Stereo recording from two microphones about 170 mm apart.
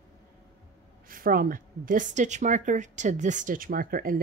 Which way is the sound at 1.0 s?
55° right (ahead or behind).